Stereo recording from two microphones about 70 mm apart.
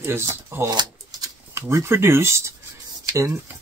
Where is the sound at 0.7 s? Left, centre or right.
Right.